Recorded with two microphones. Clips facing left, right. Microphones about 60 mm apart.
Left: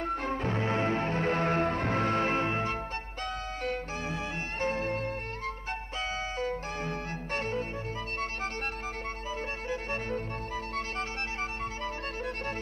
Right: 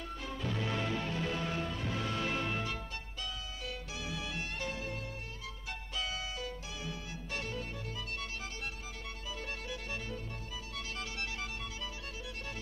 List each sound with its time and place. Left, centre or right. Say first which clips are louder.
0.0 s music: left 9 dB; left
9.7 s music: left 8 dB; left